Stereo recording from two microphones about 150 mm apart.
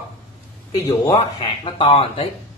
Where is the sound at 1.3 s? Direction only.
35° left (ahead or behind).